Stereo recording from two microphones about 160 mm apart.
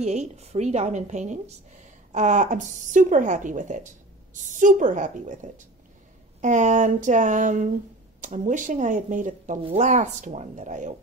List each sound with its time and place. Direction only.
0.0 s a woman's voice: 45° right (ahead or behind)